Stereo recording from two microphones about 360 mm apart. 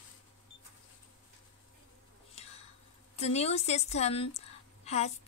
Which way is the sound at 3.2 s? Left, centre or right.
Centre.